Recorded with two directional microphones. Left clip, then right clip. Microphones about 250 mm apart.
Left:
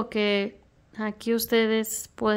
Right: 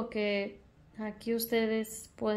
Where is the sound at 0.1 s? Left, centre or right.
Left.